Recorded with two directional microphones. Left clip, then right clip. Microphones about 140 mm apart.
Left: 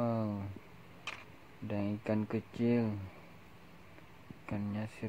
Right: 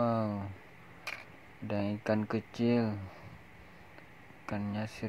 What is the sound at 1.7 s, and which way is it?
Speech, 10° right (ahead or behind).